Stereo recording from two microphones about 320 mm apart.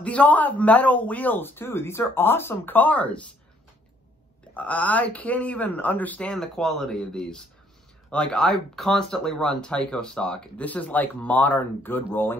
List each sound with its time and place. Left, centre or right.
0.0 s speech: centre
4.6 s speech: centre